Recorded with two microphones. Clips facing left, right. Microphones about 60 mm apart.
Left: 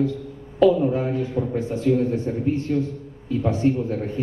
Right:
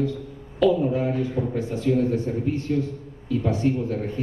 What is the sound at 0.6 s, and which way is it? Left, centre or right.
A man's voice, left.